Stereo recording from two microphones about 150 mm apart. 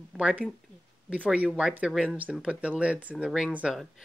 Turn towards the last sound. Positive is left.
turn(degrees=-5)  # may be behind; listen again after turning